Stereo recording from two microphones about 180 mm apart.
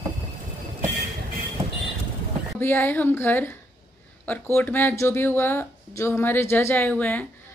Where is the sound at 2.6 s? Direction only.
10° left (ahead or behind).